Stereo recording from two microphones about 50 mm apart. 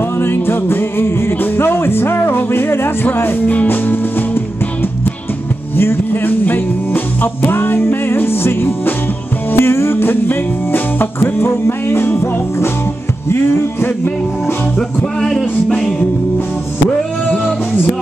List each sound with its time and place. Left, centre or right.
0.2 s music: left
5.8 s music: left
11.1 s music: left
14.8 s music: centre